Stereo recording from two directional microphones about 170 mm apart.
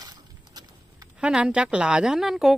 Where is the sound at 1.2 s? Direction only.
5° right (ahead or behind).